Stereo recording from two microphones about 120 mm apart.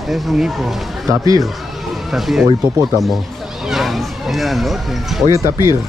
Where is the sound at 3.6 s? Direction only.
Centre (ahead or behind).